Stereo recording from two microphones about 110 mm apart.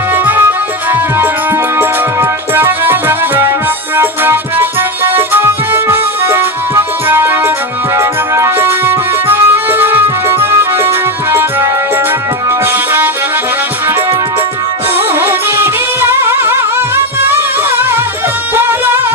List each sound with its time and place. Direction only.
0.1 s music: 20° right (ahead or behind)
15.0 s music: 20° right (ahead or behind)